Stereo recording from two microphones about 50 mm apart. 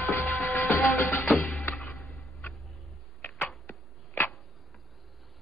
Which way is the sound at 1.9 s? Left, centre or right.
Centre.